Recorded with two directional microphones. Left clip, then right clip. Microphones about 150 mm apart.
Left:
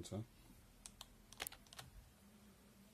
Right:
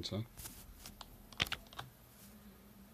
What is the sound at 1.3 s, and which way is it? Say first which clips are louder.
Computer keyboard: right 14 dB; 55° right (ahead or behind).